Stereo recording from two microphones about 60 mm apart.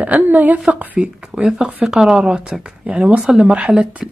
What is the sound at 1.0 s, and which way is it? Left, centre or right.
Speech, centre.